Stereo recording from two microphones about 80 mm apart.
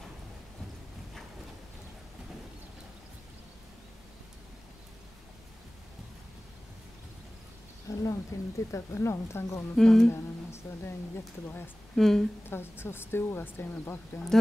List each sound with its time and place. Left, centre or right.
7.9 s speech: left
9.8 s a woman's voice: centre
10.1 s a woman's voice: left
11.9 s a woman's voice: centre
12.4 s speech: left